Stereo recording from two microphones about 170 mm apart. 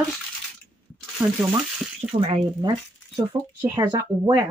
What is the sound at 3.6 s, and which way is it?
Speech, 15° right (ahead or behind).